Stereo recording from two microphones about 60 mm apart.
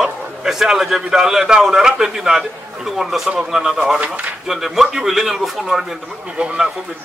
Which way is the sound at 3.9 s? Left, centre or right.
Right.